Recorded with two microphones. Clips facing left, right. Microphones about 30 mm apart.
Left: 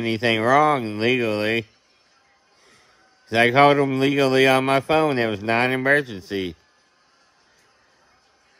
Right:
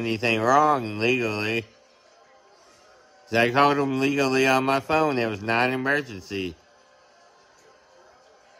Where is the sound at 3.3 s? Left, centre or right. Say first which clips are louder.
Left 4 dB; left.